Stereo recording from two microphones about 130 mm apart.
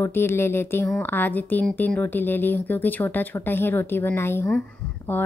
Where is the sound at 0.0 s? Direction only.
20° left (ahead or behind).